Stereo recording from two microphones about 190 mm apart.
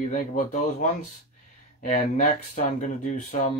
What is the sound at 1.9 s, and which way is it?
Speech, 40° left (ahead or behind).